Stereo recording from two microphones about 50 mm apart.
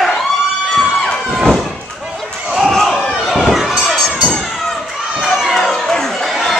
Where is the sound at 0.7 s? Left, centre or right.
Centre.